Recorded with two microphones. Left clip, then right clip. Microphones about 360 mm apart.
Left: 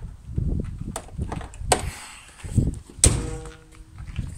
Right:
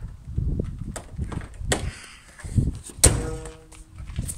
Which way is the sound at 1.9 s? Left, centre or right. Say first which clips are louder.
Left 3 dB; centre.